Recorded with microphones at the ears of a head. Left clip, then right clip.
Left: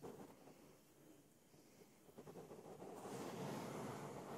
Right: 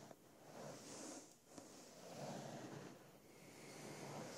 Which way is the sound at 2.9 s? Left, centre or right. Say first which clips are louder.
Left 12 dB; left.